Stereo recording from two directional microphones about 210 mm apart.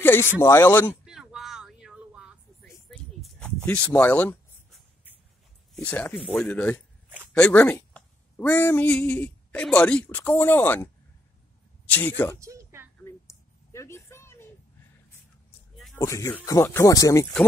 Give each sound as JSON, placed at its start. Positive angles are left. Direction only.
{"t": 0.0, "sound": "speech", "side_deg": 10}
{"t": 1.0, "sound": "vehicle", "side_deg": 0}
{"t": 5.8, "sound": "a woman's voice", "side_deg": 5}
{"t": 12.4, "sound": "a sound", "side_deg": -15}
{"t": 13.0, "sound": "a sound", "side_deg": 15}
{"t": 16.0, "sound": "speech", "side_deg": 15}